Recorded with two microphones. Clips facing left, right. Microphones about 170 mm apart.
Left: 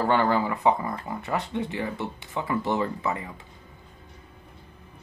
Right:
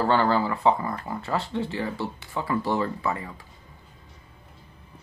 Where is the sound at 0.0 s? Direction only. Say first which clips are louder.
Right 1 dB; 20° left (ahead or behind).